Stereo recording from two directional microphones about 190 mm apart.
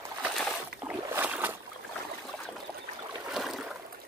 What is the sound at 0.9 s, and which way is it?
Boat, 10° right (ahead or behind).